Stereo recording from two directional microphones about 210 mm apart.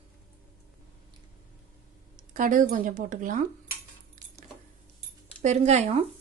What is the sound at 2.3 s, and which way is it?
Speech, 40° right (ahead or behind).